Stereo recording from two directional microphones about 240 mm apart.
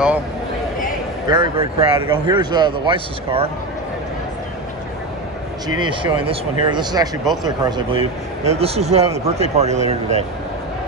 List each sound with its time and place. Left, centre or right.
1.2 s speech: centre
5.8 s speech: centre